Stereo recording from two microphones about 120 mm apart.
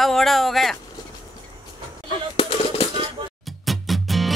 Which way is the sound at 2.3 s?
50° left (ahead or behind).